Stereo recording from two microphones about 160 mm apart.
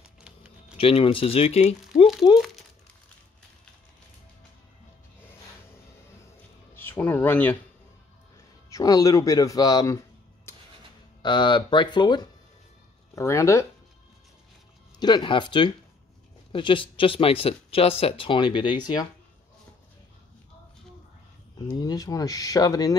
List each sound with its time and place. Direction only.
0.0 s typing: 5° right (ahead or behind)
0.7 s speech: 35° left (ahead or behind)
2.2 s speech: 25° left (ahead or behind)
6.7 s a sound: 15° left (ahead or behind)
8.6 s speech: 20° left (ahead or behind)
10.5 s music: 15° left (ahead or behind)
11.2 s speech: 30° left (ahead or behind)
15.0 s speech: 25° left (ahead or behind)
21.5 s speech: 25° left (ahead or behind)